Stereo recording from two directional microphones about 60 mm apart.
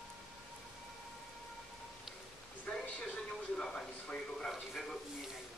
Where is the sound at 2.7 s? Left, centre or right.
Centre.